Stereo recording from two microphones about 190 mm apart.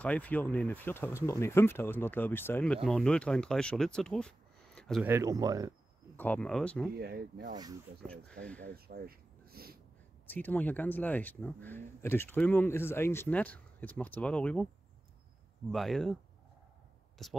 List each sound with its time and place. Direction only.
0.0 s speech: 10° left (ahead or behind)
5.0 s speech: 15° right (ahead or behind)
6.1 s speech: 10° left (ahead or behind)
7.0 s speech: 55° right (ahead or behind)
10.2 s speech: 10° left (ahead or behind)
15.7 s speech: centre (ahead or behind)
17.2 s speech: centre (ahead or behind)